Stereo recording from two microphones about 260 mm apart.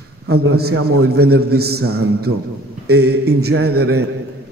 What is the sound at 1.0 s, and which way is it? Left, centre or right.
A man's voice, right.